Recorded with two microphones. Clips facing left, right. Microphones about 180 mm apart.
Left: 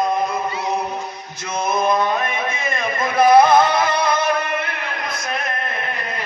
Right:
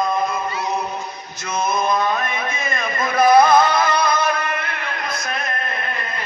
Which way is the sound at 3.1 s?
25° left (ahead or behind).